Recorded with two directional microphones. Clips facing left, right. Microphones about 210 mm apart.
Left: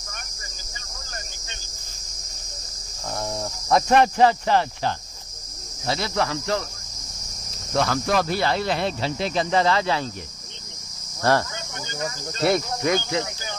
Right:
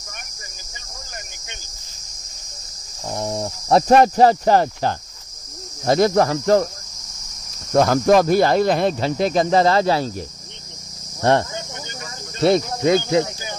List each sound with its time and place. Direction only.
3.1 s cricket: 15° right (ahead or behind)
3.4 s cricket: 30° right (ahead or behind)
5.9 s speech: 45° right (ahead or behind)
7.7 s speech: 45° right (ahead or behind)
11.1 s cricket: 20° right (ahead or behind)